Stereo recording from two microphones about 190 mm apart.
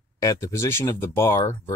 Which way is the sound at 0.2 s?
15° left (ahead or behind).